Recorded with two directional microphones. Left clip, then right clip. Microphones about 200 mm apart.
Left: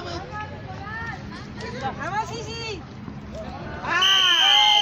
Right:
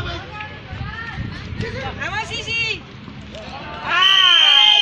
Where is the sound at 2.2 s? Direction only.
50° left (ahead or behind).